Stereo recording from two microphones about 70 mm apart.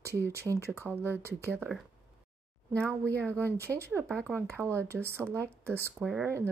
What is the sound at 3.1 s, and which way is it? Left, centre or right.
Speech, centre.